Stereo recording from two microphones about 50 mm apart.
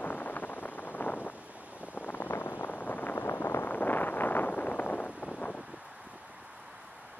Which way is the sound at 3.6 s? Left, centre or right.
Left.